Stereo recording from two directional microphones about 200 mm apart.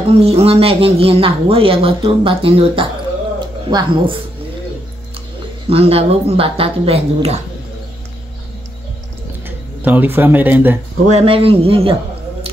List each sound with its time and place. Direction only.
0.2 s speech: 30° right (ahead or behind)
5.7 s speech: 30° right (ahead or behind)
9.8 s speech: 10° right (ahead or behind)
11.1 s speech: 30° right (ahead or behind)